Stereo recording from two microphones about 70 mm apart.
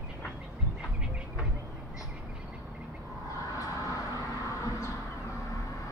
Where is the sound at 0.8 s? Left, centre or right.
Centre.